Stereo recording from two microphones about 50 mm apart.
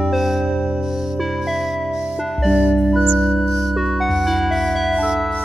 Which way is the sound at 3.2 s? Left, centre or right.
Centre.